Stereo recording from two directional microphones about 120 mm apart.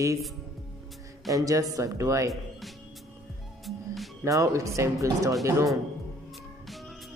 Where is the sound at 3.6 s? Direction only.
Centre (ahead or behind).